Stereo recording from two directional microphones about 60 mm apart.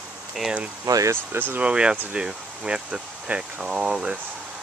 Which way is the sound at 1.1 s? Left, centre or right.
Right.